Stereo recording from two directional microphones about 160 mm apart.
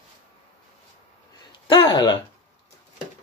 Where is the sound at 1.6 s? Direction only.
30° left (ahead or behind).